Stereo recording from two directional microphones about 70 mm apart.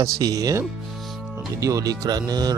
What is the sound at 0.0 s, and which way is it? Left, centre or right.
Speech, right.